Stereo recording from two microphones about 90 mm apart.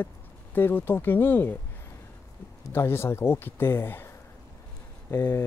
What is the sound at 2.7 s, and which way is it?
Speech, 30° left (ahead or behind).